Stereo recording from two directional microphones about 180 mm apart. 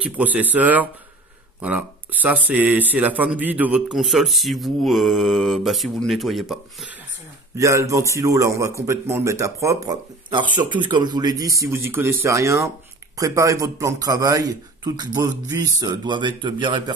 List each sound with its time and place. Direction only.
0.0 s a man's voice: 10° right (ahead or behind)
7.5 s a man's voice: 15° right (ahead or behind)